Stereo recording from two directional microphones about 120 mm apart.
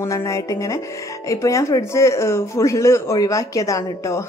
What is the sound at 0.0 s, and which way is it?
Speech, 25° left (ahead or behind).